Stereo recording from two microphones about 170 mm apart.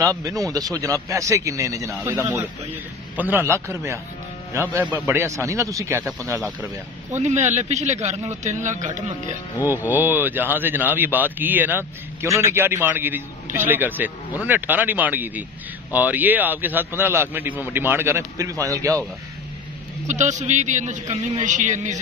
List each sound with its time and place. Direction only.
0.2 s a man's voice: 20° right (ahead or behind)
7.2 s a man's voice: 40° right (ahead or behind)
9.8 s speech: 10° right (ahead or behind)
20.1 s a man's voice: 45° right (ahead or behind)